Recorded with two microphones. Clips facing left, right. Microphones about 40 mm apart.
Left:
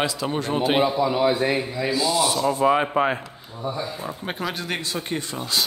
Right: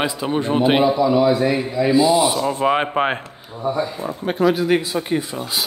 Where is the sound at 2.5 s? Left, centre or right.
Right.